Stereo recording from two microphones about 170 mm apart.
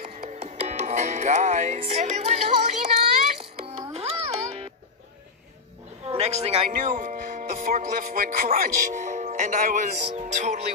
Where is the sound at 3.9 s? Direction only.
40° right (ahead or behind).